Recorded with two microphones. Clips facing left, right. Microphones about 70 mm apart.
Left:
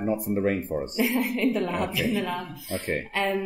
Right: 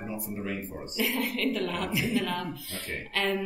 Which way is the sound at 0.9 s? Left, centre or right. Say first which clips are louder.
Left 3 dB; left.